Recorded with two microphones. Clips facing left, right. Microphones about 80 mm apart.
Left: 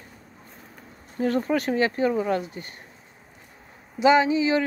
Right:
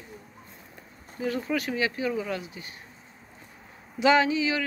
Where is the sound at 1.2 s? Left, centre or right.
Left.